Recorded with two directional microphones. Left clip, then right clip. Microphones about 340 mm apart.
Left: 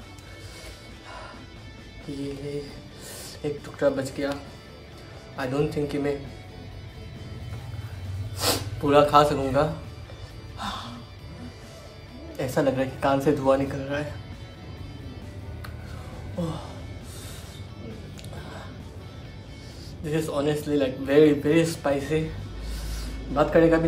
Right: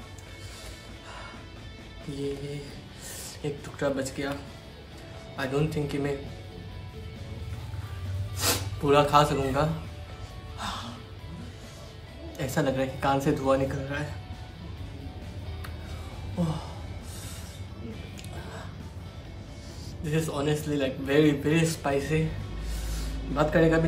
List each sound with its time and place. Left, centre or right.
3.4 s a man's voice: centre
8.4 s speech: centre
10.6 s music: centre
12.4 s a man's voice: centre
16.3 s speech: centre
20.1 s a man's voice: centre
23.3 s a man's voice: centre